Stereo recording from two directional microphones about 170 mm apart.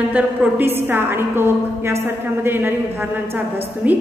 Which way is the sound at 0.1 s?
10° right (ahead or behind).